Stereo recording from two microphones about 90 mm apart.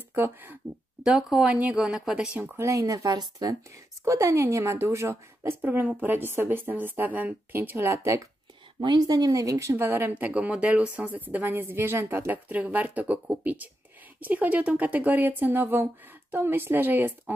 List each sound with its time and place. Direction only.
0.1 s a woman's voice: 20° right (ahead or behind)
1.0 s speech: 5° right (ahead or behind)
2.4 s speech: 35° right (ahead or behind)
4.0 s a woman's voice: 35° right (ahead or behind)
8.8 s speech: 50° right (ahead or behind); by 9.8 s 35° right (ahead or behind)
9.8 s a woman's voice: 25° right (ahead or behind)